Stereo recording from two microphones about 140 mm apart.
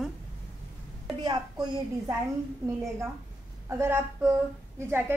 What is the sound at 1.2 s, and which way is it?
Speech, 30° right (ahead or behind).